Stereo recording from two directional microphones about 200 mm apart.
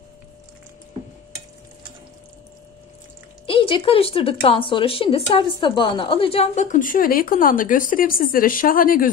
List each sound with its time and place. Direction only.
3.4 s speech: 25° left (ahead or behind); by 9.1 s 45° left (ahead or behind)